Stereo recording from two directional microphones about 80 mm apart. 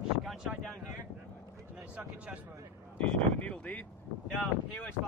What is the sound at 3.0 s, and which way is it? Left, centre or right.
Speech, centre.